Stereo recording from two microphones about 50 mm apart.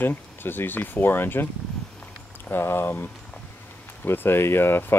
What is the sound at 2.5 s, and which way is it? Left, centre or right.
Speech, left.